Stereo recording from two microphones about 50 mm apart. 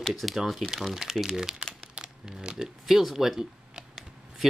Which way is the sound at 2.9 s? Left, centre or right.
Centre.